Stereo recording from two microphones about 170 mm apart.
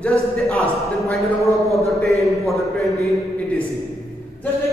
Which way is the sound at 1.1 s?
Centre (ahead or behind).